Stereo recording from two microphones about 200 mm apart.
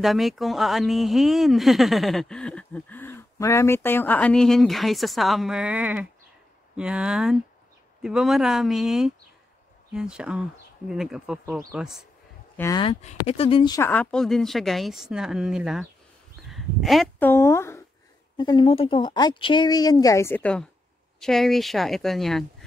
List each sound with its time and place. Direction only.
0.0 s speech: centre (ahead or behind)
12.5 s speech: 15° left (ahead or behind)
12.8 s speech: 30° left (ahead or behind); by 22.7 s centre (ahead or behind)